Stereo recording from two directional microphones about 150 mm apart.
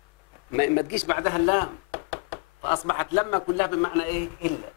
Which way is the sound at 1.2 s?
35° left (ahead or behind).